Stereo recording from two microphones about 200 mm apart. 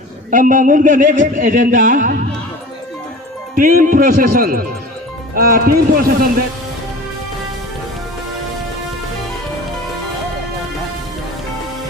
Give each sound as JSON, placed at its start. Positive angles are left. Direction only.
{"t": 0.3, "sound": "speech", "side_deg": -40}
{"t": 3.5, "sound": "speech", "side_deg": -45}